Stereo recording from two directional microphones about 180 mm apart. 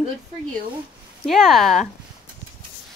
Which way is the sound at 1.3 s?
Centre (ahead or behind).